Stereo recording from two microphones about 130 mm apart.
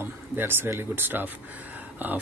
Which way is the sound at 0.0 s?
15° right (ahead or behind).